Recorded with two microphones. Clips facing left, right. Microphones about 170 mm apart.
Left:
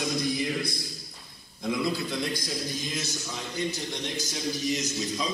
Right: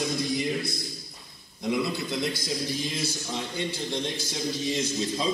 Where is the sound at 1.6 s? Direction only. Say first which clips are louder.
Right 1 dB; 20° right (ahead or behind).